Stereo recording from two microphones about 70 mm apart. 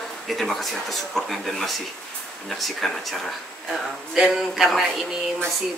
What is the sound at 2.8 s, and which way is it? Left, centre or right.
Speech, centre.